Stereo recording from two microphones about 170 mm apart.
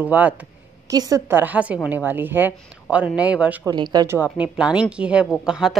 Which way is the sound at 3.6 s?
25° right (ahead or behind).